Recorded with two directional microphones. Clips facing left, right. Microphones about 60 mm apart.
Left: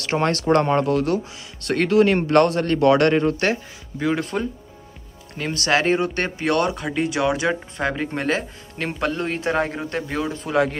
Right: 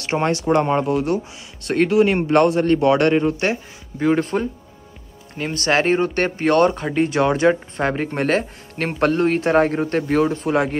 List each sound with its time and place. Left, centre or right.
0.0 s speech: right
8.3 s speech: right